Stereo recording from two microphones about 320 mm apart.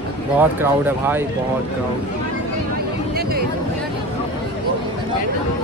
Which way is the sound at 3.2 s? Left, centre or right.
Right.